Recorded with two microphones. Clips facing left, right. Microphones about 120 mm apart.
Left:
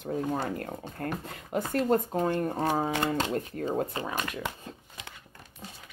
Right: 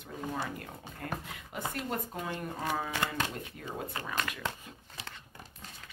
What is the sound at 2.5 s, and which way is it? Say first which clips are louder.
Speech: left 7 dB; 30° left (ahead or behind).